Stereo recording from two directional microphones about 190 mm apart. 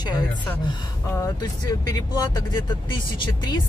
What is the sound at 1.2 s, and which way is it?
Speech, 20° left (ahead or behind).